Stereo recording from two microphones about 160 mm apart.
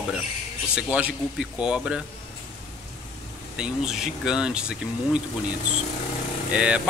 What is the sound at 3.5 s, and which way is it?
Speech, 5° right (ahead or behind).